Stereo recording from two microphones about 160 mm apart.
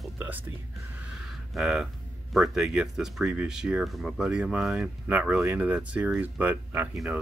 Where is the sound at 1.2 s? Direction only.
Centre (ahead or behind).